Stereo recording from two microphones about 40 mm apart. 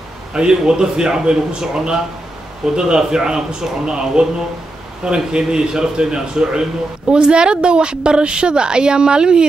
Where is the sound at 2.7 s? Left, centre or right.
Centre.